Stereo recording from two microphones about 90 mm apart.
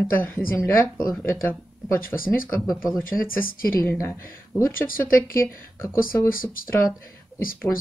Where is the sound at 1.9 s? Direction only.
20° left (ahead or behind).